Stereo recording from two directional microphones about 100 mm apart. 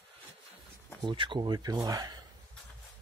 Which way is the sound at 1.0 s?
55° right (ahead or behind).